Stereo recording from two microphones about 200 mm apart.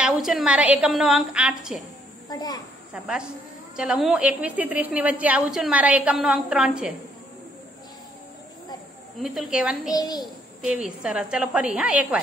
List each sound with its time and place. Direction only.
0.0 s a woman's voice: centre (ahead or behind)
2.2 s a child's voice: 20° left (ahead or behind)
2.9 s a woman's voice: 5° right (ahead or behind)
9.2 s a woman's voice: centre (ahead or behind)
9.9 s a child's voice: 20° left (ahead or behind)
10.6 s a woman's voice: 5° right (ahead or behind)